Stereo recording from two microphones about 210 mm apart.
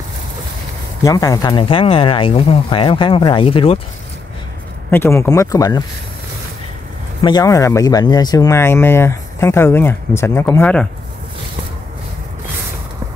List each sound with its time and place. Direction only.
1.0 s speech: 15° left (ahead or behind)
4.9 s speech: 10° left (ahead or behind)
7.2 s speech: 20° left (ahead or behind)